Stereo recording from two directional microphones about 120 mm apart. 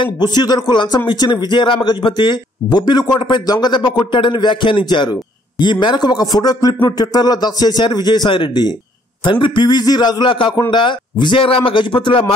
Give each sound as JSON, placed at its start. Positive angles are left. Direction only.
{"t": 0.0, "sound": "a man's voice", "side_deg": 40}